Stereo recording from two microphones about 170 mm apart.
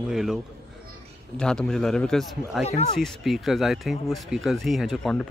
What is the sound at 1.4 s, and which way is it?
Speech, 5° left (ahead or behind).